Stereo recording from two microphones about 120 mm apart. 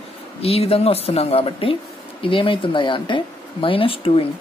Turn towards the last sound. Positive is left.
turn(degrees=50)  # may be behind; listen again after turning